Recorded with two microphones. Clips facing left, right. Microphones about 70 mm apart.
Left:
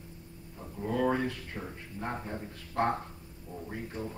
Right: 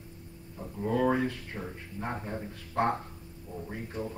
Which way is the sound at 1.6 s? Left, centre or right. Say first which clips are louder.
Right 1 dB; centre.